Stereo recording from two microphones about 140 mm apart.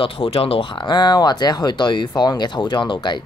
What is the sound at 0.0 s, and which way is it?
Speech, 40° left (ahead or behind).